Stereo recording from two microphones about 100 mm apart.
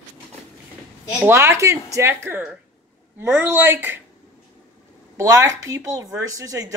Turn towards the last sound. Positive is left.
turn(degrees=-35)  # may be behind; listen again after turning